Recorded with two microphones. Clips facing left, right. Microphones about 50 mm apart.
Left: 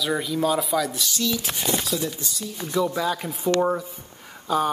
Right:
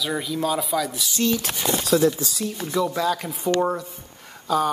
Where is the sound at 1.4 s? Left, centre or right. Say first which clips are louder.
Right 3 dB; right.